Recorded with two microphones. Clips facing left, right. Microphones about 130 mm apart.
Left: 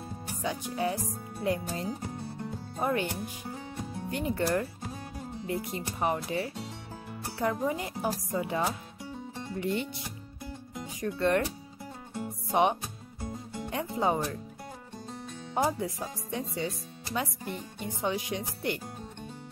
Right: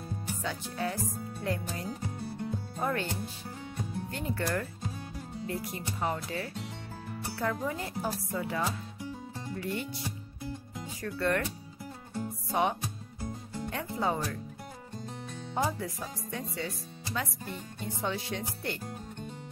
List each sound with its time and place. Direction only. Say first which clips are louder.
0.4 s speech: left 5 dB; 15° left (ahead or behind)
5.5 s speech: left 3 dB; 25° left (ahead or behind)
12.2 s music: left 3 dB; 20° left (ahead or behind)
15.5 s speech: left 3 dB; 20° left (ahead or behind)